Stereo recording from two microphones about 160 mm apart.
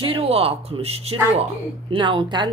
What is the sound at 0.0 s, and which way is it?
A woman's voice, 35° right (ahead or behind).